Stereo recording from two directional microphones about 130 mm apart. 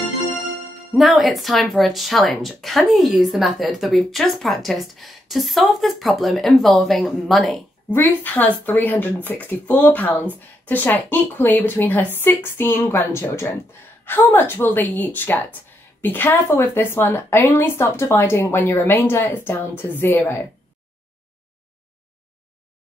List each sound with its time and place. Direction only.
0.9 s speech: centre (ahead or behind)
7.9 s a woman's voice: 15° left (ahead or behind)